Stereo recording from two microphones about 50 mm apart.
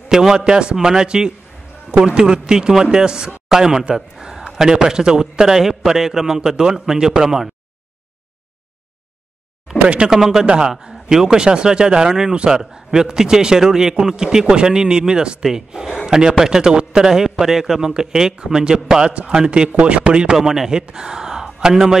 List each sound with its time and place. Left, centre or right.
0.1 s a man's voice: centre
10.0 s a man's voice: centre
10.4 s a man's voice: centre
20.3 s a man's voice: centre